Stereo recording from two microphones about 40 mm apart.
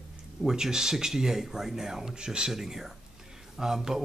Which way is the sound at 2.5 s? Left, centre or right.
Centre.